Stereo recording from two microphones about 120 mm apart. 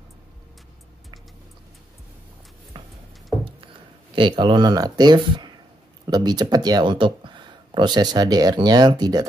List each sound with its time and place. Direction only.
2.8 s music: 50° right (ahead or behind)
3.4 s speech: 45° right (ahead or behind)